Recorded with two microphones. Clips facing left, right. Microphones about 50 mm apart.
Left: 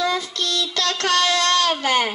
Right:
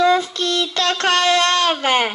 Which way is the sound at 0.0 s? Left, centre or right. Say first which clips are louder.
Right 7 dB; right.